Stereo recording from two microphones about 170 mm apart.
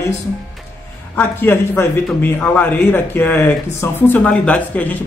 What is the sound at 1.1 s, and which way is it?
Speech, 10° left (ahead or behind).